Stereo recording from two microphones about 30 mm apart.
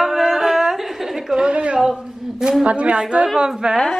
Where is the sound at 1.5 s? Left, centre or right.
Right.